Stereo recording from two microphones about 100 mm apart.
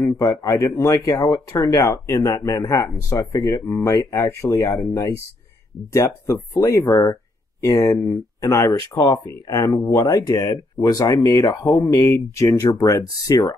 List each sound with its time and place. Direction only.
0.0 s speech: 35° left (ahead or behind)